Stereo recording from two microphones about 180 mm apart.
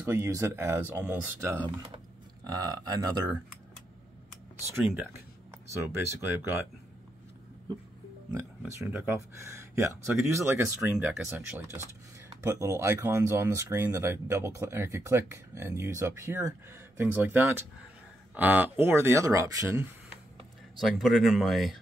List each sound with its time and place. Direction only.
0.0 s speech: 15° right (ahead or behind)
4.7 s speech: 10° right (ahead or behind)
8.3 s speech: 15° right (ahead or behind)
20.8 s speech: centre (ahead or behind)